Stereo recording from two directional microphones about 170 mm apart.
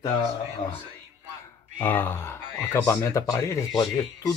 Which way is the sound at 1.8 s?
10° left (ahead or behind).